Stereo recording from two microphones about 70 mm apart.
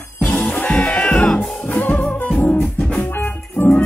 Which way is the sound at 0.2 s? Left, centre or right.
Centre.